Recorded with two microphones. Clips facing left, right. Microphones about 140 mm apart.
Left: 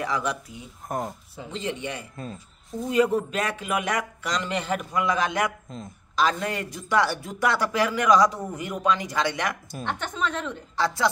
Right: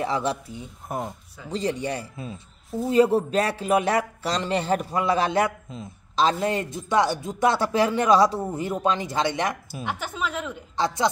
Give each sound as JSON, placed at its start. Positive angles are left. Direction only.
{"t": 0.0, "sound": "speech", "side_deg": -30}
{"t": 0.8, "sound": "speech", "side_deg": 0}
{"t": 1.5, "sound": "speech", "side_deg": -35}
{"t": 5.7, "sound": "a woman's voice", "side_deg": -5}
{"t": 6.1, "sound": "speech", "side_deg": -25}
{"t": 9.7, "sound": "a woman's voice", "side_deg": -5}